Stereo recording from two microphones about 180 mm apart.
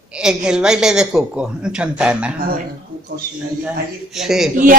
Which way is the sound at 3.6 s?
Centre (ahead or behind).